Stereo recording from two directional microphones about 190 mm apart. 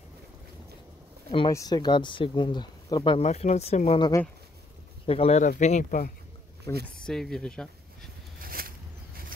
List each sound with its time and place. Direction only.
1.5 s speech: 20° left (ahead or behind); by 6.0 s 40° left (ahead or behind)
6.7 s speech: 15° left (ahead or behind)
7.1 s speech: centre (ahead or behind)
8.4 s a sound: 50° right (ahead or behind)